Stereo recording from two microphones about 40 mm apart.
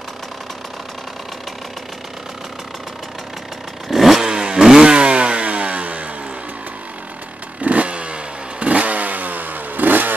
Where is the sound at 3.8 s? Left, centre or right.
Centre.